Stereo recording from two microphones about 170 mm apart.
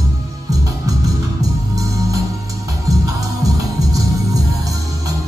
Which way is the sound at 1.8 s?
20° right (ahead or behind).